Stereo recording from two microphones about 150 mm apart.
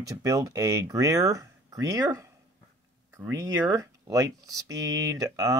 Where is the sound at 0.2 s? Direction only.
25° right (ahead or behind).